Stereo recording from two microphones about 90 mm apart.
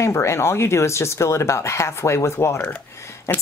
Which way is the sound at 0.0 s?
30° left (ahead or behind).